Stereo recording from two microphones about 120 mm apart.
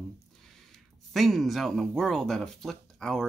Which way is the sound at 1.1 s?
Centre (ahead or behind).